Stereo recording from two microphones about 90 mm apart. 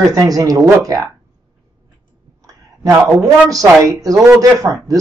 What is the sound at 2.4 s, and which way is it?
A woman's voice, 40° right (ahead or behind).